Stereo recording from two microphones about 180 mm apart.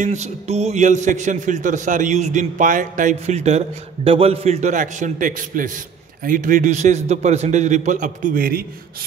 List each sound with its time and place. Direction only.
0.0 s a man's voice: 40° right (ahead or behind)